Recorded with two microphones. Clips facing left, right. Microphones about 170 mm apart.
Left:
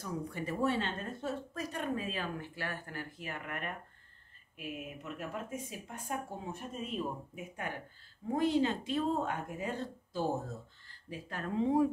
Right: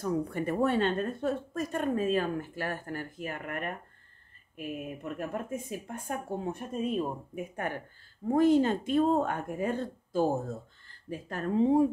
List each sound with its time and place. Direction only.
0.0 s speech: 55° right (ahead or behind); by 11.9 s 30° right (ahead or behind)